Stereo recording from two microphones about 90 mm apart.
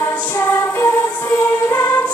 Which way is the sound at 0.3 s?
35° left (ahead or behind).